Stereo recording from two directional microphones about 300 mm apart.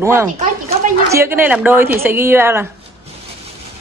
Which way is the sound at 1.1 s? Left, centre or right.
Centre.